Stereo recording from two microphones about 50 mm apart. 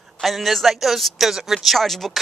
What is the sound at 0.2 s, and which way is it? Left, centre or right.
Speech, centre.